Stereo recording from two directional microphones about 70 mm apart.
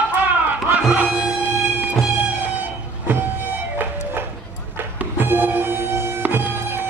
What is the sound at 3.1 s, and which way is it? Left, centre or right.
Music, right.